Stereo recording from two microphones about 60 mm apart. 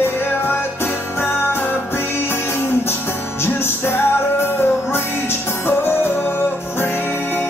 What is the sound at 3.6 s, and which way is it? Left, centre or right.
Music, left.